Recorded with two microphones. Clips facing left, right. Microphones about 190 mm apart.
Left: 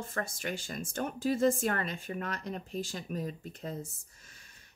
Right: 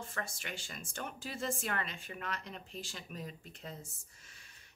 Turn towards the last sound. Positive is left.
turn(degrees=40)  # may be behind; listen again after turning